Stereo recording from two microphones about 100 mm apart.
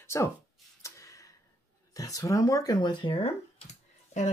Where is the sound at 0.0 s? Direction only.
30° left (ahead or behind).